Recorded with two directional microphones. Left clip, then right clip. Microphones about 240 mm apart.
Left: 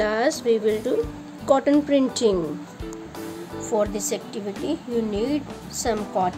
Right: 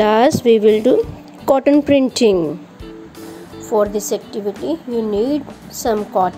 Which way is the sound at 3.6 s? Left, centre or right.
Centre.